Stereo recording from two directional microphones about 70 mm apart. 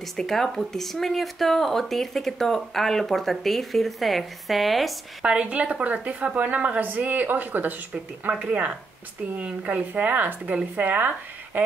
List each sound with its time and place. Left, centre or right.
0.0 s speech: centre
5.2 s a woman's voice: centre
8.2 s a woman's voice: centre